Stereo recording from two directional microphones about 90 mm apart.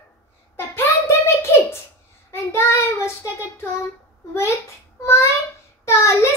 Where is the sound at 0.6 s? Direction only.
30° left (ahead or behind).